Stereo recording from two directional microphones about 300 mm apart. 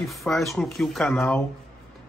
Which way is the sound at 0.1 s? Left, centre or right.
Centre.